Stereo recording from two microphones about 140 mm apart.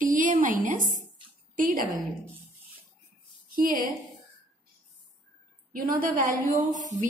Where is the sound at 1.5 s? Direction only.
80° right.